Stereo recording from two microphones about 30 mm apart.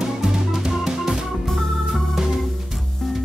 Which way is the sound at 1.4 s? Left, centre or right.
Centre.